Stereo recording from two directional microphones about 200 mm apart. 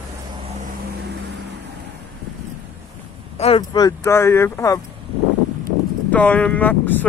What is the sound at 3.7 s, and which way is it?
Speech, 15° left (ahead or behind).